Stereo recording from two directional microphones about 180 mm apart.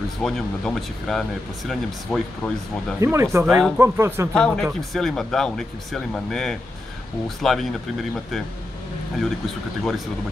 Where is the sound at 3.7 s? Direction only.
15° right (ahead or behind).